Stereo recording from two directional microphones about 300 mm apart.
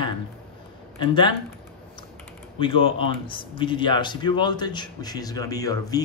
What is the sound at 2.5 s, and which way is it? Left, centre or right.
A man's voice, centre.